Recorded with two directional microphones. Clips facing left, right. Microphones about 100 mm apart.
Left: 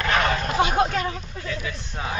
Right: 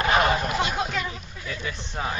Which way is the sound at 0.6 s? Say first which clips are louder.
Left 5 dB; 50° left (ahead or behind).